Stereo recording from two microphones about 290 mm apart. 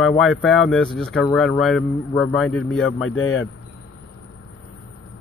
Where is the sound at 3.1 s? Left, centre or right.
Left.